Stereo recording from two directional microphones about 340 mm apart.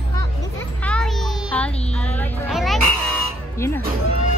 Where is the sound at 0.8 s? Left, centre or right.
Centre.